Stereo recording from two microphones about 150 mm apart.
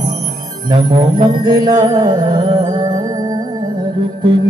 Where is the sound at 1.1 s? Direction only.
30° right (ahead or behind).